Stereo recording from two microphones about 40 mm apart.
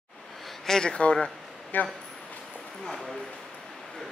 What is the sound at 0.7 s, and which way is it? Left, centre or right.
Speech, centre.